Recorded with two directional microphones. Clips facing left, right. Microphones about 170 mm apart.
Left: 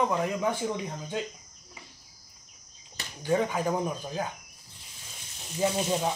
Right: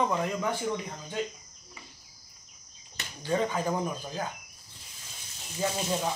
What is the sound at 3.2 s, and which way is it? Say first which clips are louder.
Speech: left 2 dB; 15° left (ahead or behind).